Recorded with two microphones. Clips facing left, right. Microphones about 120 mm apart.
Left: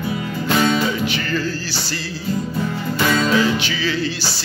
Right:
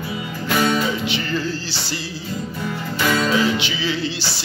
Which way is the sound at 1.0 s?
20° right (ahead or behind).